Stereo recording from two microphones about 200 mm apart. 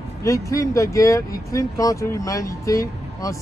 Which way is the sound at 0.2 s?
15° left (ahead or behind).